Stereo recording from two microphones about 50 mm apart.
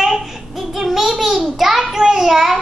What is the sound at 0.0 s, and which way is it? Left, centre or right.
Child singing, centre.